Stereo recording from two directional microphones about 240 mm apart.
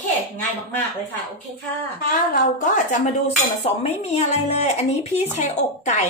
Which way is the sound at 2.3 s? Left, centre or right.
Left.